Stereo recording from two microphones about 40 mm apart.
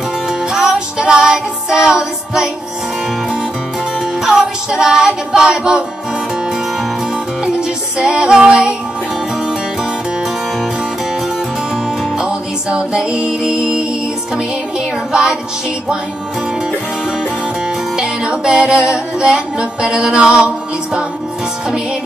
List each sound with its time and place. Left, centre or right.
0.3 s music: centre
4.0 s music: centre
7.5 s music: right
12.2 s music: right
17.9 s music: right